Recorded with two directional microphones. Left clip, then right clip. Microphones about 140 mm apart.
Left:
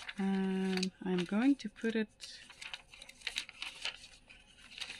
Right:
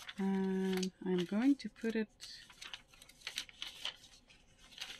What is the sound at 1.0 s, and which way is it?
Speech, 20° left (ahead or behind).